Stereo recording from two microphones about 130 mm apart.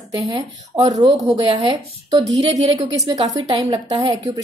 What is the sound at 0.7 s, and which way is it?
Speech, 50° right (ahead or behind).